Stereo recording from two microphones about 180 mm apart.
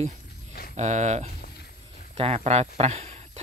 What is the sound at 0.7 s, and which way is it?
Speech, 40° right (ahead or behind).